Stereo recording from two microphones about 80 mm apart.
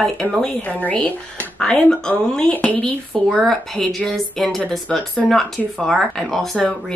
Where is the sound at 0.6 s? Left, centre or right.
Centre.